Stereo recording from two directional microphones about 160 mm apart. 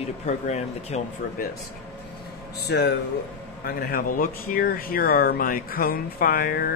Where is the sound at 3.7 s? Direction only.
70° left (ahead or behind).